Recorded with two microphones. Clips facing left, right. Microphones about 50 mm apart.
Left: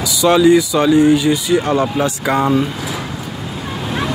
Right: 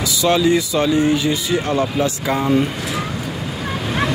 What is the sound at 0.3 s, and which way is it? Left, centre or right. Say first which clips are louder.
Speech: left 5 dB; centre.